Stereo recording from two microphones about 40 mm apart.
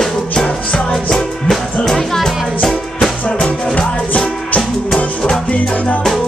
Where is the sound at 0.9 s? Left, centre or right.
Centre.